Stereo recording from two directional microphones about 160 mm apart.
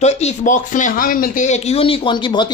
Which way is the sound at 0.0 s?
45° left (ahead or behind).